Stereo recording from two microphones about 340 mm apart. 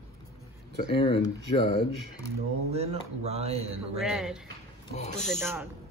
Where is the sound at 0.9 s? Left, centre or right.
Centre.